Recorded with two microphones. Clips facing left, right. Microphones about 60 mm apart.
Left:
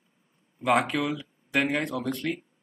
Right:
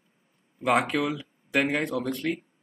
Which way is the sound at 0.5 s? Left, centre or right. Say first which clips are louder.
Even; centre.